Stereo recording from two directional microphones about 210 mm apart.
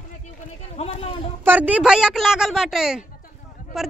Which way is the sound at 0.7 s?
30° left (ahead or behind).